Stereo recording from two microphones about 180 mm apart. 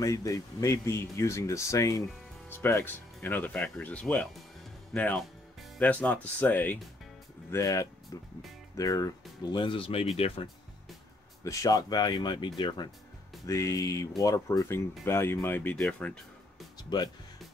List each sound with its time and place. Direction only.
0.0 s speech: 20° left (ahead or behind)
11.4 s speech: 20° left (ahead or behind)
16.7 s speech: 20° left (ahead or behind)